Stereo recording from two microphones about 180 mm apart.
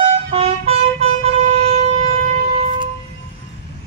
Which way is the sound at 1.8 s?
35° right (ahead or behind).